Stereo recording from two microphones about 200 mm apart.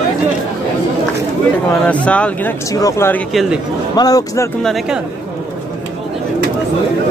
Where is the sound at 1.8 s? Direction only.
5° left (ahead or behind).